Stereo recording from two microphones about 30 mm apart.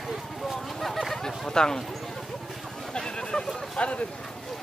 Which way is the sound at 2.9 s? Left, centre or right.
Left.